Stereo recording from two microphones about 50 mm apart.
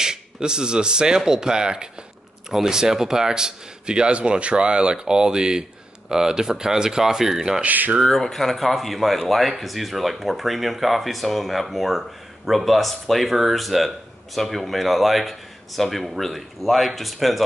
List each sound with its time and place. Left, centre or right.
0.0 s speech: centre
7.6 s speech: right
8.0 s speech: centre